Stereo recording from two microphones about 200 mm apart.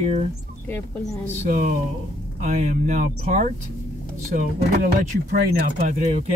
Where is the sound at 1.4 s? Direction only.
40° right (ahead or behind).